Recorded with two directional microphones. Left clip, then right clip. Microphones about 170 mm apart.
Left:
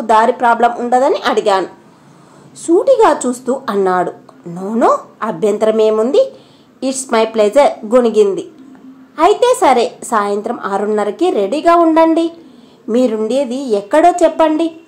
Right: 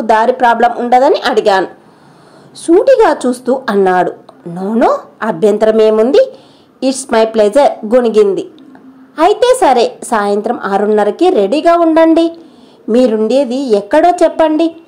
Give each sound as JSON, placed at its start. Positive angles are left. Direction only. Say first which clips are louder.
{"t": 0.0, "sound": "a woman's voice", "louder": "right 2 dB", "side_deg": -30}